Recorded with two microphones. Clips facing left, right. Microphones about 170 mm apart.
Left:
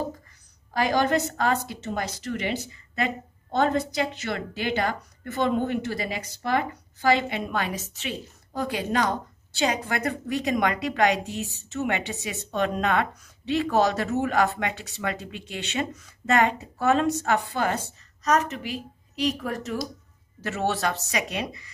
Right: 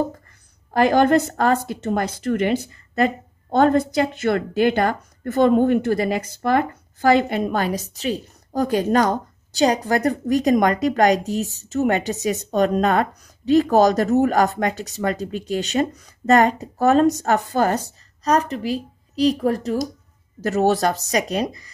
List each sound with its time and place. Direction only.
0.7 s a woman's voice: 55° right (ahead or behind); by 21.6 s 40° right (ahead or behind)